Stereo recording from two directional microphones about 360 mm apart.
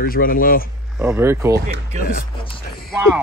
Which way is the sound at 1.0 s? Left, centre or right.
Centre.